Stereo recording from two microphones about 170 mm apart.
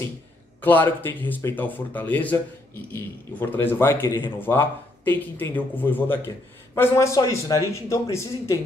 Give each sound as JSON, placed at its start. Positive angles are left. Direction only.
{"t": 0.6, "sound": "speech", "side_deg": 10}